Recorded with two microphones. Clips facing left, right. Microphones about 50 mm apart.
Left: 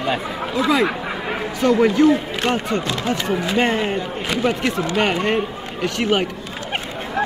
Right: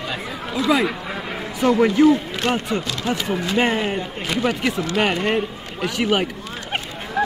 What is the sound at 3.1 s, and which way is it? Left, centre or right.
Speech, centre.